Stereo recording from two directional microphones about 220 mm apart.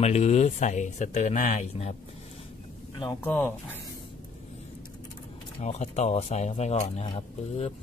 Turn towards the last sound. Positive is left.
turn(degrees=30)  # may be behind; listen again after turning